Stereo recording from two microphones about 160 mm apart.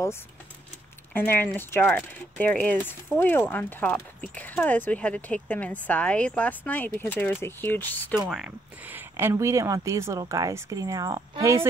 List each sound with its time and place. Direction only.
1.1 s speech: 15° left (ahead or behind)
8.3 s speech: 5° right (ahead or behind); by 11.6 s 20° right (ahead or behind)